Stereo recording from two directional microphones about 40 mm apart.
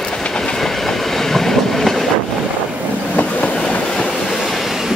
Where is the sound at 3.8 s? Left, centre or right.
Centre.